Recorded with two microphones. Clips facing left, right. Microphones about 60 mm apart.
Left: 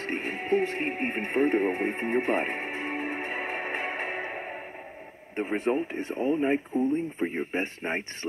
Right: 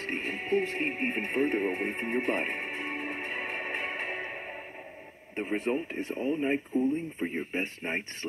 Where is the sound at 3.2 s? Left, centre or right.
Centre.